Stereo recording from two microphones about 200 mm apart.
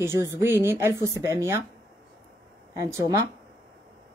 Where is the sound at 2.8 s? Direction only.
15° right (ahead or behind).